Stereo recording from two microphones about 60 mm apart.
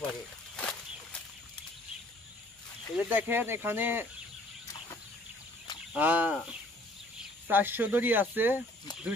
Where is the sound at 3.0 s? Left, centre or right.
Right.